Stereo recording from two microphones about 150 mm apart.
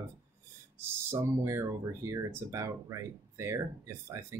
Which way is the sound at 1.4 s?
20° right (ahead or behind).